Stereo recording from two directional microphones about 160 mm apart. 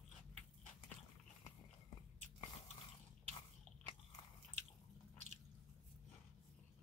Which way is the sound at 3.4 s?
35° left (ahead or behind).